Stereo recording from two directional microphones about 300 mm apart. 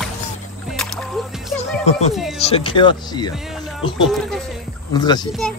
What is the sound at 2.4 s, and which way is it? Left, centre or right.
Speech, centre.